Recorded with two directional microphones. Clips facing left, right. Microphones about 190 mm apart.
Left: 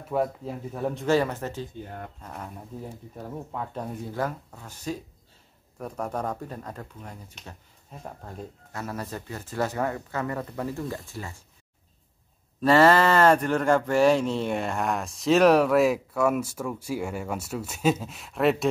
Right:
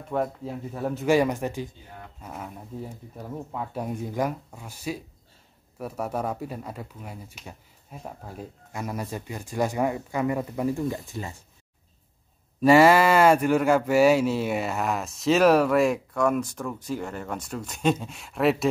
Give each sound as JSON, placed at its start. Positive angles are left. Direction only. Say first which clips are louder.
{"t": 0.1, "sound": "speech", "louder": "left 1 dB", "side_deg": 0}
{"t": 1.8, "sound": "speech", "louder": "left 7 dB", "side_deg": 55}
{"t": 2.2, "sound": "speech", "louder": "right 1 dB", "side_deg": -5}
{"t": 3.5, "sound": "speech", "louder": "right 3 dB", "side_deg": -10}
{"t": 12.6, "sound": "speech", "louder": "right 2 dB", "side_deg": -10}